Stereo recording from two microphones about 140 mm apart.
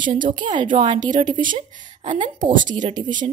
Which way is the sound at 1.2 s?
35° right (ahead or behind).